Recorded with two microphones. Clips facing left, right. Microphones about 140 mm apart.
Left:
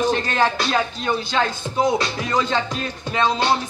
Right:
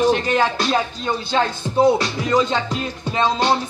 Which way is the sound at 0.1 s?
15° right (ahead or behind).